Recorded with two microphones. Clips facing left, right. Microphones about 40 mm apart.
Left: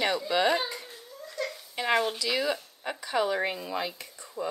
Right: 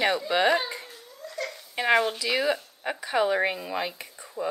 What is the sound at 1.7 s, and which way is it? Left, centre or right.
Speech, centre.